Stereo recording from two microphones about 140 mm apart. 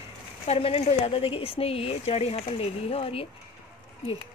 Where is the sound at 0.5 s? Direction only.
45° left (ahead or behind).